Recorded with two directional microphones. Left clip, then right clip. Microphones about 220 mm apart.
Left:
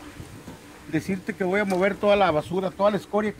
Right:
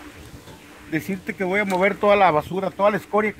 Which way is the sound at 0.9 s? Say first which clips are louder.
Right 1 dB; 25° right (ahead or behind).